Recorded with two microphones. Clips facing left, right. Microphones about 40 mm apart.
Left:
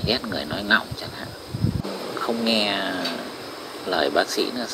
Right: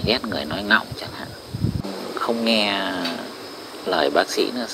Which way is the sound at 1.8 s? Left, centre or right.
Centre.